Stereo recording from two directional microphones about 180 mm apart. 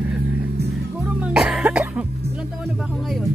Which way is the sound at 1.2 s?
5° right (ahead or behind).